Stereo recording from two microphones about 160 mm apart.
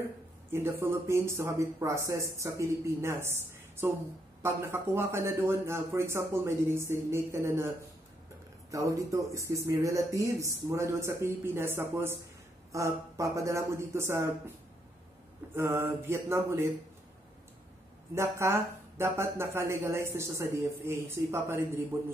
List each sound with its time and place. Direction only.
0.5 s speech: 15° right (ahead or behind)
8.7 s speech: 20° right (ahead or behind)
15.5 s speech: 15° right (ahead or behind)
18.1 s speech: 15° right (ahead or behind)